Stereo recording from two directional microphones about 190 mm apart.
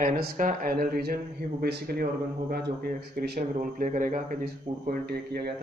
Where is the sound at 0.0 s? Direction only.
50° right (ahead or behind).